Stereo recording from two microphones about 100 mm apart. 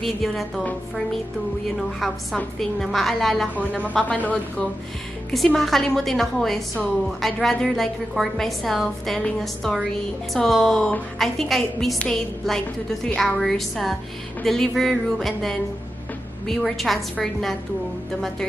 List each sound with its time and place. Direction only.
0.0 s a woman's voice: centre (ahead or behind)
2.3 s a woman's voice: centre (ahead or behind)
3.5 s a woman's voice: 15° left (ahead or behind)
5.3 s a woman's voice: centre (ahead or behind)